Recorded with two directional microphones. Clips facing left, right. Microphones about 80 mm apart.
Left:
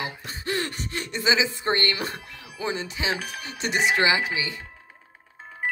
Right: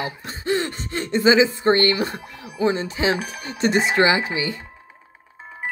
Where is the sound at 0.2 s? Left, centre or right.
Right.